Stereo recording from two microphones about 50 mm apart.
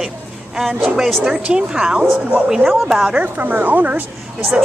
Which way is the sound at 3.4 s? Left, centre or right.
Right.